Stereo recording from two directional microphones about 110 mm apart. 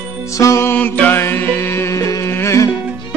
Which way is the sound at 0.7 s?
15° left (ahead or behind).